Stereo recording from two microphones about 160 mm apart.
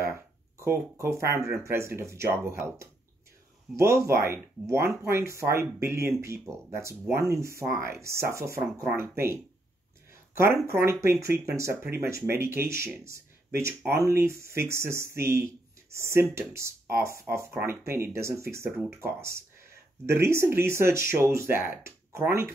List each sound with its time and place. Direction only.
0.6 s speech: 15° right (ahead or behind)